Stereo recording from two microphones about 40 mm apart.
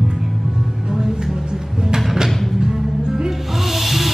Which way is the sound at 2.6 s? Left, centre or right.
Centre.